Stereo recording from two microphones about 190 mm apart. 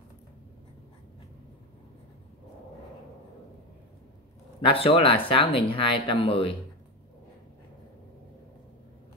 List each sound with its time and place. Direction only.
4.6 s speech: 30° left (ahead or behind)